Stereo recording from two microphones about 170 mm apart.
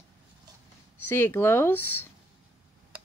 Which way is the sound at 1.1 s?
10° left (ahead or behind).